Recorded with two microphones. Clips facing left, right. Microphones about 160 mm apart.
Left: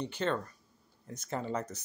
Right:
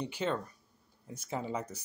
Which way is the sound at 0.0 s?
10° right (ahead or behind).